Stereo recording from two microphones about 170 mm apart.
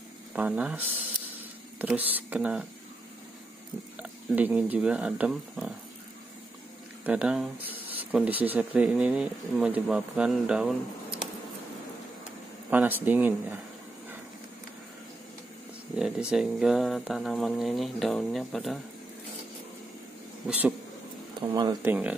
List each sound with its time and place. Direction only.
0.3 s speech: 5° right (ahead or behind)
4.0 s speech: 10° right (ahead or behind)
7.1 s speech: 5° right (ahead or behind)
12.6 s speech: 10° right (ahead or behind)
16.0 s speech: 5° right (ahead or behind)
20.4 s speech: 10° right (ahead or behind)
21.8 s speech: 10° right (ahead or behind)